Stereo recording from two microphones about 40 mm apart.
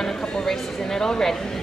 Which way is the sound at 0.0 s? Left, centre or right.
Centre.